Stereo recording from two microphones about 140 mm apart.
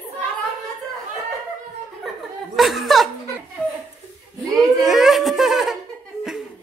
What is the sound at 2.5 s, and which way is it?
Chuckle, centre (ahead or behind).